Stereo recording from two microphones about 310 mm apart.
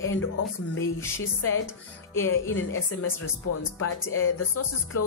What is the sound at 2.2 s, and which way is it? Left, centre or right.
Speech, left.